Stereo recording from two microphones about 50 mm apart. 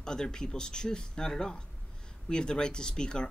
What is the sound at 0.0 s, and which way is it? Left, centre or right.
Speech, centre.